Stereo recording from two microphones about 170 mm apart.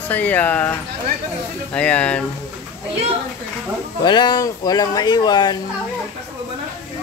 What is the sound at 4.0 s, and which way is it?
Speech, 25° left (ahead or behind).